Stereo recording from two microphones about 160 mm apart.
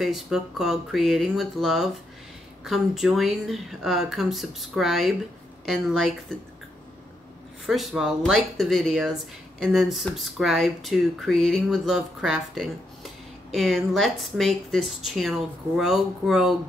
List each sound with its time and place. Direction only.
0.0 s speech: centre (ahead or behind)
7.6 s speech: centre (ahead or behind)